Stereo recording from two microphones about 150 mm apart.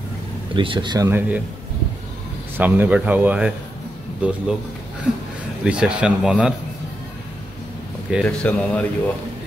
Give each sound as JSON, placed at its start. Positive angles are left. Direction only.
{"t": 0.6, "sound": "speech", "side_deg": -30}
{"t": 1.0, "sound": "speech", "side_deg": -15}
{"t": 2.5, "sound": "speech", "side_deg": -15}
{"t": 5.6, "sound": "speech", "side_deg": -5}
{"t": 8.2, "sound": "speech", "side_deg": 10}